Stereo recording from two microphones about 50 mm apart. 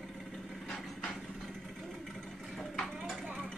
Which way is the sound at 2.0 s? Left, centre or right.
Centre.